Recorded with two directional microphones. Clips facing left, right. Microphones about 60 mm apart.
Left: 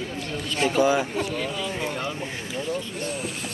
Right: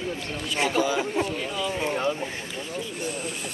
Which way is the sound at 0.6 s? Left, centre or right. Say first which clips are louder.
Left 4 dB; left.